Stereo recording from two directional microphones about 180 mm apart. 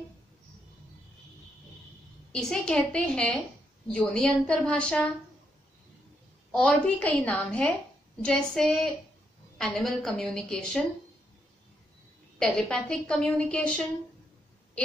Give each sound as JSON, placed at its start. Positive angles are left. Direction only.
{"t": 2.3, "sound": "a woman's voice", "side_deg": 5}
{"t": 6.5, "sound": "a woman's voice", "side_deg": 5}
{"t": 12.4, "sound": "a woman's voice", "side_deg": 5}